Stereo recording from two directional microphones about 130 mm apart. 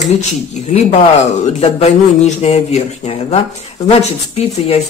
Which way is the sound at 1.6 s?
65° left (ahead or behind).